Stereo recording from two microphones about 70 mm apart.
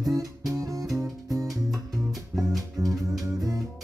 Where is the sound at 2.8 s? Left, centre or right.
Right.